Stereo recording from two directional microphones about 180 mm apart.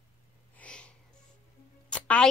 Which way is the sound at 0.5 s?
5° left (ahead or behind).